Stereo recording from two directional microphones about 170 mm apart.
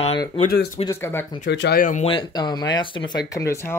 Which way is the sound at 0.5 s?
65° left (ahead or behind).